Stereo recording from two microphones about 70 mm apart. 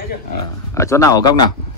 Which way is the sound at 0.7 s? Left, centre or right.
Left.